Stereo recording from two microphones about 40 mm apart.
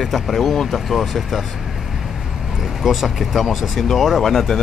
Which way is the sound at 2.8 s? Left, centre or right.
Centre.